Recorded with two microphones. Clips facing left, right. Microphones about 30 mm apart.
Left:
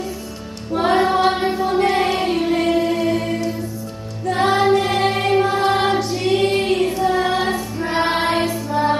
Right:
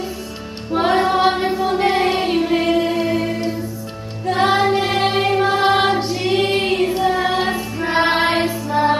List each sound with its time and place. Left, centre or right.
0.8 s female singing: centre
1.3 s music: centre
1.6 s music: centre
5.7 s choir: centre
7.1 s child singing: centre